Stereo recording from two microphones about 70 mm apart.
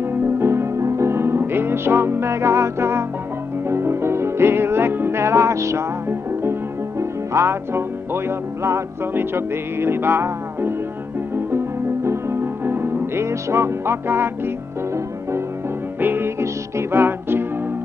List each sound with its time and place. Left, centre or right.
0.0 s music: right
16.0 s music: right